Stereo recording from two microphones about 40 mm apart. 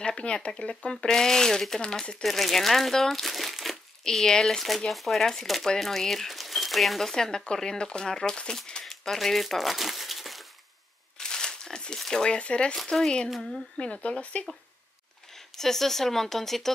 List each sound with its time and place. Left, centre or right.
0.0 s speech: left
1.0 s speech: centre
2.2 s speech: centre
4.0 s speech: centre
8.6 s crumpling: centre
11.1 s crumpling: centre
12.0 s speech: centre
13.7 s speech: left
15.3 s speech: centre